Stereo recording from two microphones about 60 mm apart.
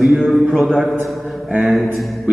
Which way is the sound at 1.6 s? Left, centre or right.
Centre.